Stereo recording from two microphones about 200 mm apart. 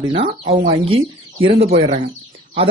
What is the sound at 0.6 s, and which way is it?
Speech, 25° right (ahead or behind).